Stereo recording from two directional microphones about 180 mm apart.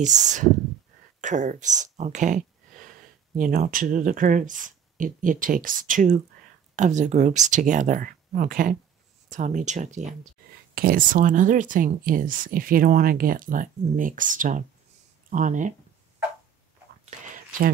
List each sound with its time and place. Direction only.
0.0 s speech: 40° right (ahead or behind)
10.7 s speech: 55° right (ahead or behind)